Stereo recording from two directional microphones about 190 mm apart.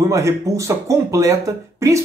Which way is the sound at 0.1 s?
15° right (ahead or behind).